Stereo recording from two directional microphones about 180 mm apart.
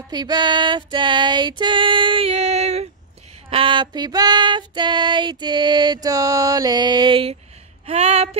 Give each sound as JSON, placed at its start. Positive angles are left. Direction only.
{"t": 0.1, "sound": "female singing", "side_deg": -25}
{"t": 7.8, "sound": "speech", "side_deg": -35}